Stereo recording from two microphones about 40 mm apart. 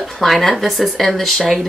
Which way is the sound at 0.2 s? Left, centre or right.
Centre.